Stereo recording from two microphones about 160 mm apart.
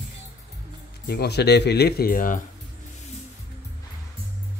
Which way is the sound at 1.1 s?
90° left.